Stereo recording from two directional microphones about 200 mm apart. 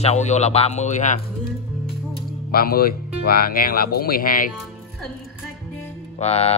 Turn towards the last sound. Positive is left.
turn(degrees=30)  # may be behind; listen again after turning